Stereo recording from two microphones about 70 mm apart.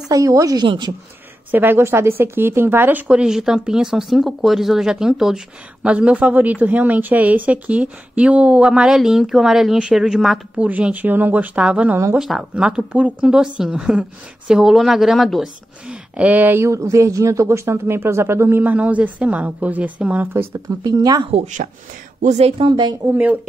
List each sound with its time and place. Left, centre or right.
0.1 s a woman's voice: right
1.5 s speech: right
3.2 s speech: centre
10.6 s a woman's voice: right
12.2 s a woman's voice: centre
12.5 s a woman's voice: centre
15.9 s speech: right
16.6 s speech: right
18.6 s a woman's voice: right
20.8 s a woman's voice: right
23.0 s a woman's voice: right